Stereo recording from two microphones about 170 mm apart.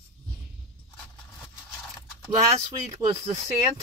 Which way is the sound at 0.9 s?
5° left (ahead or behind).